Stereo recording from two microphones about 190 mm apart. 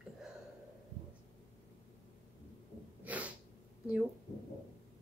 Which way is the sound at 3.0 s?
10° right (ahead or behind).